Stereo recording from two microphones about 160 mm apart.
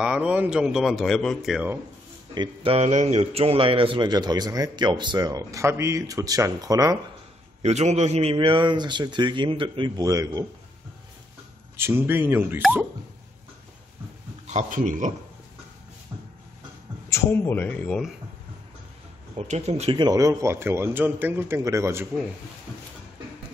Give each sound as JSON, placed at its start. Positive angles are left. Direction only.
{"t": 0.0, "sound": "speech", "side_deg": -5}
{"t": 2.3, "sound": "a man's voice", "side_deg": -30}
{"t": 7.6, "sound": "a man's voice", "side_deg": -45}
{"t": 11.7, "sound": "a man's voice", "side_deg": -15}
{"t": 14.5, "sound": "a man's voice", "side_deg": -50}
{"t": 17.1, "sound": "speech", "side_deg": 15}
{"t": 19.3, "sound": "a man's voice", "side_deg": -45}
{"t": 20.0, "sound": "a man's voice", "side_deg": -25}